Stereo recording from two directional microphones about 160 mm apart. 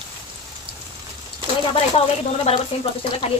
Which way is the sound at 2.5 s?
40° left (ahead or behind).